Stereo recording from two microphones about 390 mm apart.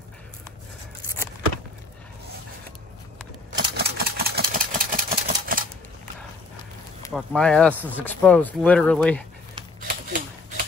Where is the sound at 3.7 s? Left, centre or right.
Right.